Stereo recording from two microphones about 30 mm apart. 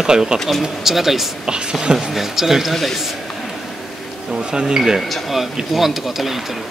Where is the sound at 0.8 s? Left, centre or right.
Centre.